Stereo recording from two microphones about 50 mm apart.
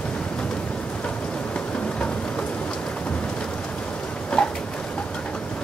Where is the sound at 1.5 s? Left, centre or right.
Left.